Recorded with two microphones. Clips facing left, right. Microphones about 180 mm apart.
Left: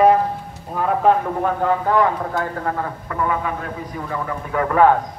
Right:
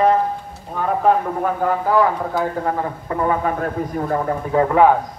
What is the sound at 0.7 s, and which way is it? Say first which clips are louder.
A man's voice: even; centre (ahead or behind).